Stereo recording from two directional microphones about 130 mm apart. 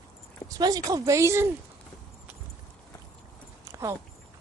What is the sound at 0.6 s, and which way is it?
Speech, 30° right (ahead or behind).